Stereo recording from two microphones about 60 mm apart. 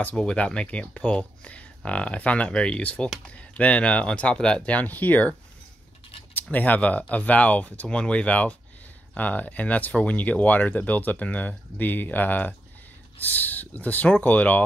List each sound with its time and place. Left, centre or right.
0.1 s speech: centre; by 5.3 s left
6.3 s speech: left